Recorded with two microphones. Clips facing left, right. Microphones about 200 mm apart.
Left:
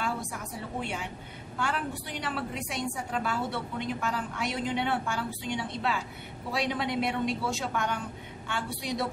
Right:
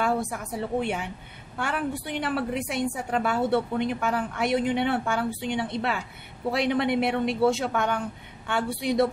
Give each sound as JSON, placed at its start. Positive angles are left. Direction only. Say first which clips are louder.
{"t": 0.0, "sound": "a woman's voice", "louder": "right 7 dB", "side_deg": -60}